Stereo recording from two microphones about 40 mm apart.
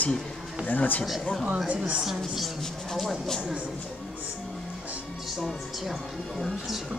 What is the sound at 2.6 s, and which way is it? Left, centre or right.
Speech, centre.